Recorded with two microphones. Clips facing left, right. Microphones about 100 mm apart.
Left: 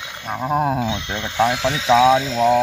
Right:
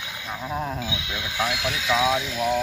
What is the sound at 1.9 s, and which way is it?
Speech, 90° left.